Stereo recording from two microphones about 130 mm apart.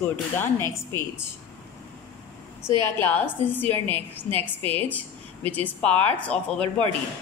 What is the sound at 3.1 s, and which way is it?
A woman's voice, 15° left (ahead or behind).